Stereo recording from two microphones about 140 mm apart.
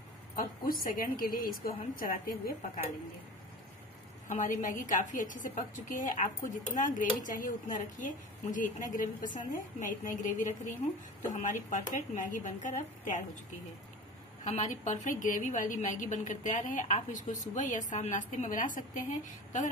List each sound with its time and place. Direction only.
0.7 s a woman's voice: 90° left
4.3 s a woman's voice: 65° left (ahead or behind)
14.4 s a woman's voice: 55° left (ahead or behind)